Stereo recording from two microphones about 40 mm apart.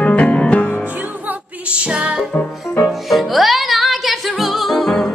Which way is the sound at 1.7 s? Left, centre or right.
Right.